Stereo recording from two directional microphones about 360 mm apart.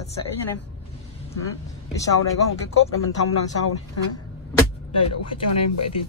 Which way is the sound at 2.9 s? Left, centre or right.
Left.